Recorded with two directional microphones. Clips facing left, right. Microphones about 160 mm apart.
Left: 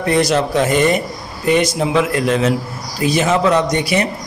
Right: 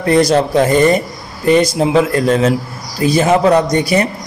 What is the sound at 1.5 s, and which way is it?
A man's voice, 35° right (ahead or behind).